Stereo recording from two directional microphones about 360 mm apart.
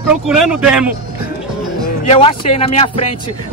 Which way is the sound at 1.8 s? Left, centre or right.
Centre.